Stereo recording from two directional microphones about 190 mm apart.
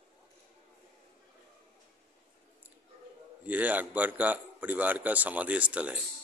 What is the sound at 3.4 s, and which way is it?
A man's voice, 10° right (ahead or behind).